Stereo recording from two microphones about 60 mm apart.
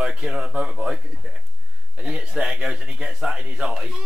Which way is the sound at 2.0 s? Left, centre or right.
Centre.